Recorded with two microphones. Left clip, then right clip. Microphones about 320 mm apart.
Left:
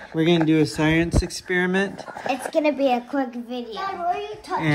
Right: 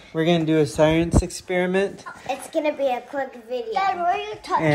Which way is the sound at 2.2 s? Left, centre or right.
Left.